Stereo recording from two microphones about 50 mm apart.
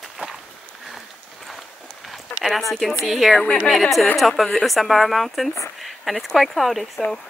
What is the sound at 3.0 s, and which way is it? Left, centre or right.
Speech, centre.